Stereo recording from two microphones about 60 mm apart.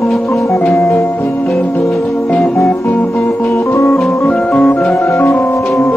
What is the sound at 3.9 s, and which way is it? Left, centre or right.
Organ, centre.